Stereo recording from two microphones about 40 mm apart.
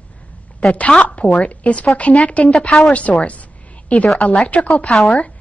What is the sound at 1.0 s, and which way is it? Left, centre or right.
A woman's voice, left.